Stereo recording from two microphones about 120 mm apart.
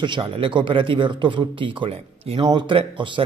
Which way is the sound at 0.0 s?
45° right (ahead or behind).